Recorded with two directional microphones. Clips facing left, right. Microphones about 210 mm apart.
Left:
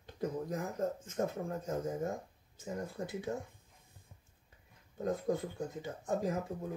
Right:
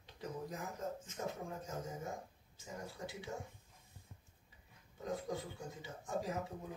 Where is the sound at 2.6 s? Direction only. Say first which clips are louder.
Left 7 dB; 55° left (ahead or behind).